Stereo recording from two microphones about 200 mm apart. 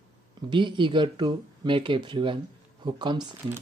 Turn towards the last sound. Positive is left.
turn(degrees=-20)  # may be behind; listen again after turning